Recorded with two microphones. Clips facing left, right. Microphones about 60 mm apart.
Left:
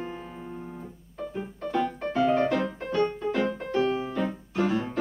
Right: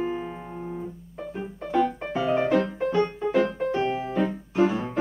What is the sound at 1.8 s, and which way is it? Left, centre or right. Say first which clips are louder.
Music: right 1 dB; centre.